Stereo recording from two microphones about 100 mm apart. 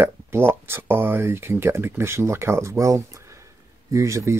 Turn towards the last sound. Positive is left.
turn(degrees=-30)  # may be behind; listen again after turning